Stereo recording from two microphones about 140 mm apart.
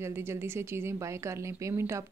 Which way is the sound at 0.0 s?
20° right (ahead or behind).